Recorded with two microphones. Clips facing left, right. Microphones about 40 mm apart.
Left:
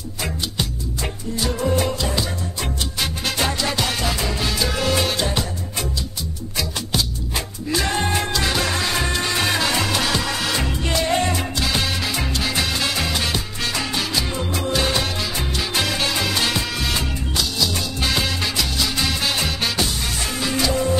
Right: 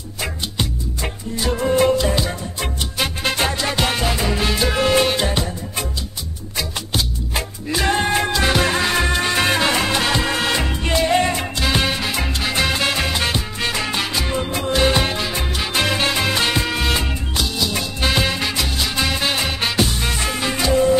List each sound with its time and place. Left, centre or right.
1.3 s music: right
7.7 s music: right
12.3 s salsa music: right
14.7 s music: right